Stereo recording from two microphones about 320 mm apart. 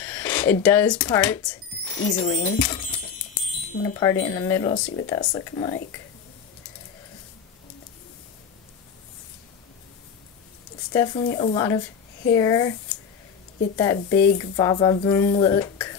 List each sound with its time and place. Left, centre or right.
0.0 s speech: centre
2.0 s speech: left
10.9 s speech: centre
13.7 s speech: centre